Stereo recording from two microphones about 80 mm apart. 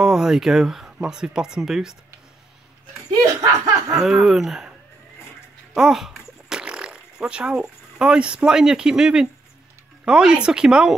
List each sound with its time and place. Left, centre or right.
0.0 s speech: centre
3.3 s a sound: right
4.0 s speech: centre
5.8 s speech: centre